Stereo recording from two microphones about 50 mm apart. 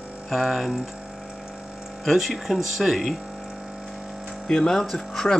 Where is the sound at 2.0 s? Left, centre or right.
Centre.